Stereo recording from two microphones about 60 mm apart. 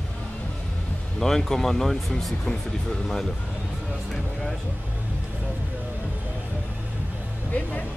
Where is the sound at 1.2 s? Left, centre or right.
Centre.